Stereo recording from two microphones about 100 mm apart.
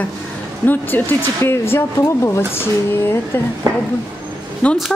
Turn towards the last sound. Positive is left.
turn(degrees=15)  # may be behind; listen again after turning